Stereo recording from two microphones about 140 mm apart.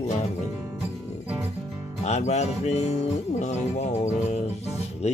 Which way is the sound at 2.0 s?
50° left (ahead or behind).